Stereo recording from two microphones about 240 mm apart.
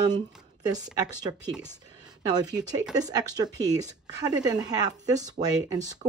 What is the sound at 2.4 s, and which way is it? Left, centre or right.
Speech, centre.